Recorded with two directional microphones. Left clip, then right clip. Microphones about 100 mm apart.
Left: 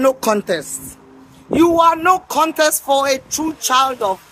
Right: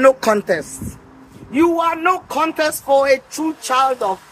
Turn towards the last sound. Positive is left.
turn(degrees=85)